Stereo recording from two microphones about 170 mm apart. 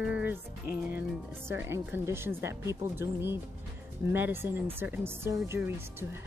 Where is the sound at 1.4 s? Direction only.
15° right (ahead or behind).